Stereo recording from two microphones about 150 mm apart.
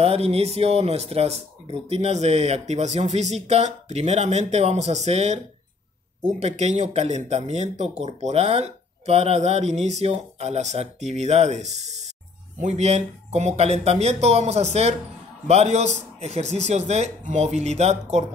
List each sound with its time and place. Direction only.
0.0 s speech: 40° right (ahead or behind)